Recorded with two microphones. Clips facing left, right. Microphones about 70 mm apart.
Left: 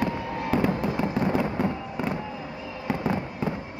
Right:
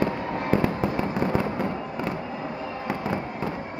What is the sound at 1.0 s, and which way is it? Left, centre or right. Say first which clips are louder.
Fireworks: even; centre.